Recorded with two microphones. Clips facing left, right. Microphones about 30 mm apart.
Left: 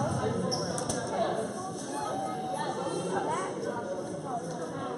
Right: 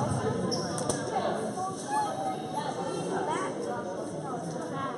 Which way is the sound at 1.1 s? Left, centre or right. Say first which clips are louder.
Left 2 dB; centre.